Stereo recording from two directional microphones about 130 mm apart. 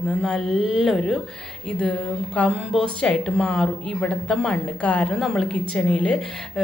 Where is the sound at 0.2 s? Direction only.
Centre (ahead or behind).